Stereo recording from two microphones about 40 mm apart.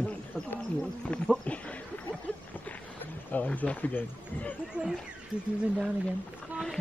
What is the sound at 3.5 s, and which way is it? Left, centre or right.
Speech, left.